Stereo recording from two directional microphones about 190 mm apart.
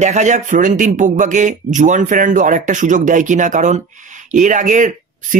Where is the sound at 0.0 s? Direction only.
40° right (ahead or behind).